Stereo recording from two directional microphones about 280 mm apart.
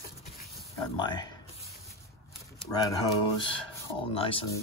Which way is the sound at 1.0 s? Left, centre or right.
Centre.